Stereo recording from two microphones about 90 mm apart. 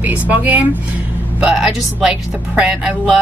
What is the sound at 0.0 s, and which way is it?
Speech, 15° right (ahead or behind).